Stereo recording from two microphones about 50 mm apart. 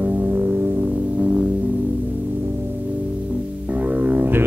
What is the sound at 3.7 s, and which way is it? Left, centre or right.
Music, right.